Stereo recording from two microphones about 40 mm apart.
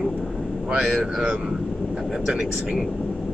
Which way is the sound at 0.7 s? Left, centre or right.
Right.